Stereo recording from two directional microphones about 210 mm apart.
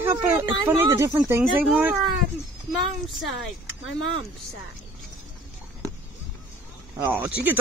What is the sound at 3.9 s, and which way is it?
Speech, 70° left (ahead or behind).